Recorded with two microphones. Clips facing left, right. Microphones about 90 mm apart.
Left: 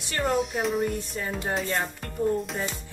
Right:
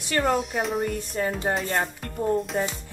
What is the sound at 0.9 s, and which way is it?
Music, 50° right (ahead or behind).